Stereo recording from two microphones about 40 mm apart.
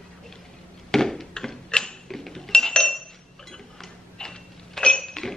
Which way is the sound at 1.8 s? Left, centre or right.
Centre.